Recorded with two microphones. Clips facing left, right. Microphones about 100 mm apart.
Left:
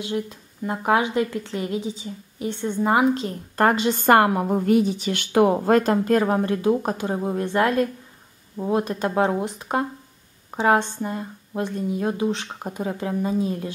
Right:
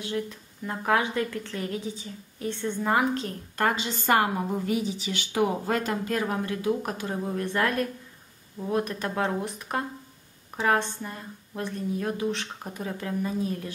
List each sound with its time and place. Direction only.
0.0 s a woman's voice: 20° left (ahead or behind)
3.5 s a woman's voice: 45° left (ahead or behind)
6.2 s a woman's voice: 35° left (ahead or behind)